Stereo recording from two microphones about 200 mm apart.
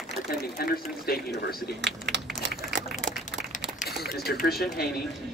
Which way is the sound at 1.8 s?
60° right (ahead or behind).